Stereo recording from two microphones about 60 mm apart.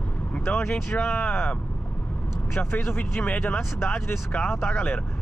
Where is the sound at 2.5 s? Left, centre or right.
Left.